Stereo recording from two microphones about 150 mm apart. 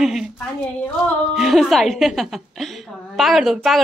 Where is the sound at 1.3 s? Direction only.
Centre (ahead or behind).